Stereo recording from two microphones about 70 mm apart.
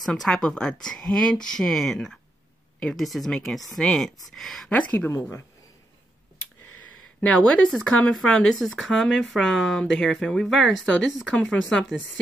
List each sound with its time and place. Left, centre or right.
0.2 s speech: centre
4.6 s speech: left
7.2 s speech: centre